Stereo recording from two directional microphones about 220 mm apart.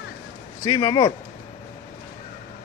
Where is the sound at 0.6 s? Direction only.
15° left (ahead or behind).